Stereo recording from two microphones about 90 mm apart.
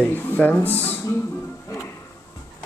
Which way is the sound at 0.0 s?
15° left (ahead or behind).